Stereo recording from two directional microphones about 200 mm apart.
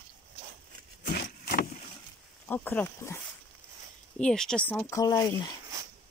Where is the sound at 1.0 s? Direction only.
55° left (ahead or behind).